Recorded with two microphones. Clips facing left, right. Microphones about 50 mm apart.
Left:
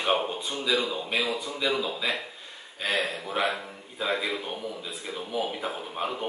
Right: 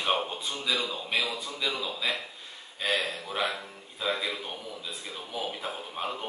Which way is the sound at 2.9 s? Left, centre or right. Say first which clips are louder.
Left 3 dB; centre.